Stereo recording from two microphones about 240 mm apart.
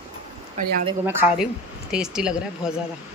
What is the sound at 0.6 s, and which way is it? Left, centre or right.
Speech, right.